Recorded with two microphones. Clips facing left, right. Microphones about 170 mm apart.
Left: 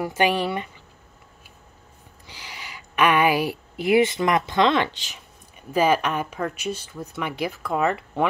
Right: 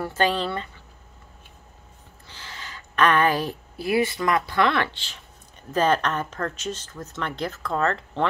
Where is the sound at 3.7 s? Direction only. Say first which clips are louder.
Left 4 dB; 20° left (ahead or behind).